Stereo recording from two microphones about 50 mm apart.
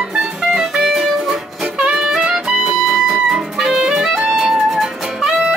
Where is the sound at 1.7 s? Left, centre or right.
Centre.